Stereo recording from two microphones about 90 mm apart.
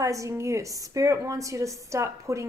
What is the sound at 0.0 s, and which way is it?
Speech, 35° right (ahead or behind).